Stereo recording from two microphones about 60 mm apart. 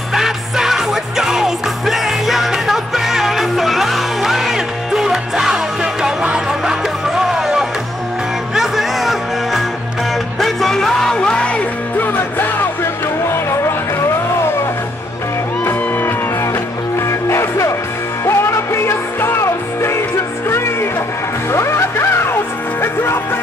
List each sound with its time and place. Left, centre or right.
0.1 s music: centre
12.0 s music: left
13.3 s music: left
17.3 s music: left